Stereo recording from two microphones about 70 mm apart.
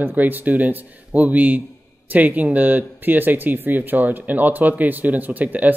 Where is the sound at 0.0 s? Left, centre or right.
Right.